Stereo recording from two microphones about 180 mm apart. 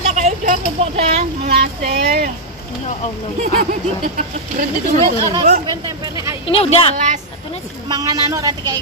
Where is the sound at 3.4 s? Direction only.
50° right (ahead or behind).